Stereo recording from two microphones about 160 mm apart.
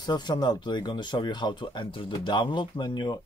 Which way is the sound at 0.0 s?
25° left (ahead or behind).